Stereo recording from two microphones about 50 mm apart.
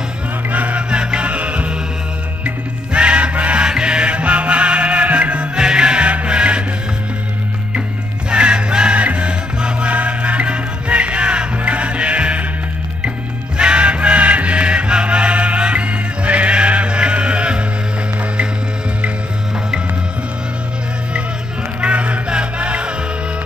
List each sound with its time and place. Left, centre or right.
0.5 s music: right
8.3 s music: right
13.6 s music: right
21.8 s music: right